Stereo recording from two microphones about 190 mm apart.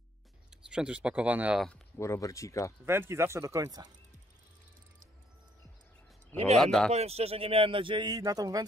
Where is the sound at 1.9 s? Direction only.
15° left (ahead or behind).